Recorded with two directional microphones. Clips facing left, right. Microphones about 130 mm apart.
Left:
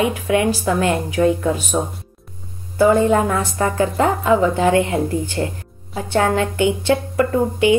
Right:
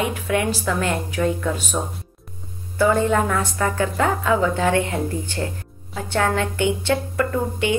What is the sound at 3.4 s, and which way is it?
A woman's voice, 35° left (ahead or behind).